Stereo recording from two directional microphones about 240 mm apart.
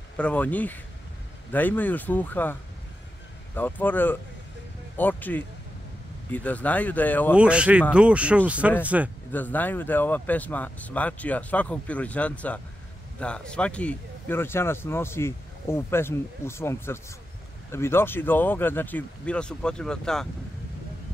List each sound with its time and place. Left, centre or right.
0.2 s speech: centre
3.5 s speech: centre
7.3 s speech: centre
9.3 s speech: centre